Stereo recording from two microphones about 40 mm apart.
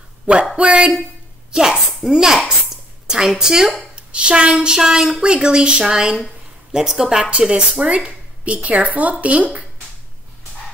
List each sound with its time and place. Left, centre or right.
0.6 s a woman's voice: right
3.9 s speech: right
4.7 s a woman's voice: centre
7.9 s speech: right